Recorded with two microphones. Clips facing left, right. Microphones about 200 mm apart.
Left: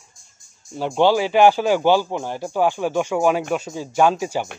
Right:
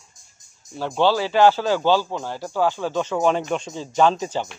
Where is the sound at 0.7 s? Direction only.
15° left (ahead or behind).